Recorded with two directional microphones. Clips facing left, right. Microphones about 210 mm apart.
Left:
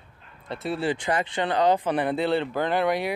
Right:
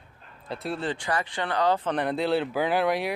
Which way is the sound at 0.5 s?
Centre (ahead or behind).